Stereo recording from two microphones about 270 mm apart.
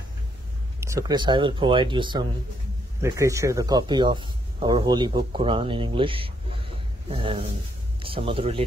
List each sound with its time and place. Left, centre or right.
0.7 s speech: centre